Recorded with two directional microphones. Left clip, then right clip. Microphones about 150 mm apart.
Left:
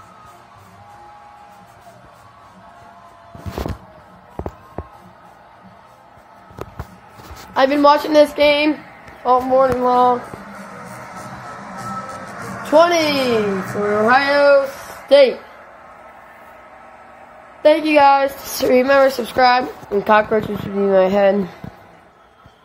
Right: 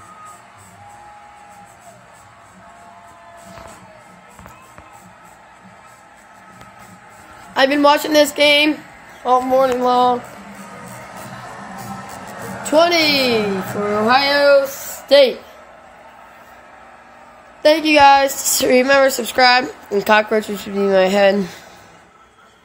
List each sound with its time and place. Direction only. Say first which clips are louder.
7.5 s a woman's voice: even; 5° right (ahead or behind)
9.7 s a sound: even; 20° right (ahead or behind)
10.9 s music: left 1 dB; 45° right (ahead or behind)
12.6 s a woman's voice: left 1 dB; centre (ahead or behind)
17.6 s a woman's voice: right 1 dB; 10° right (ahead or behind)